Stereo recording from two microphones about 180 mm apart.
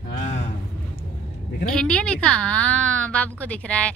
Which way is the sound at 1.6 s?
5° left (ahead or behind).